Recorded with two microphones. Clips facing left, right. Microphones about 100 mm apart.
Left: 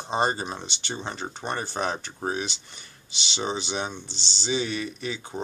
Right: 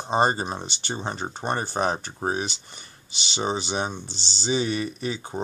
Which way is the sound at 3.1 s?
45° right (ahead or behind).